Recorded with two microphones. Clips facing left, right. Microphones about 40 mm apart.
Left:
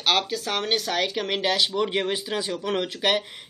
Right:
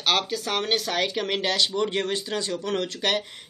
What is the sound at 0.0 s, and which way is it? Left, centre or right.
Speech, centre.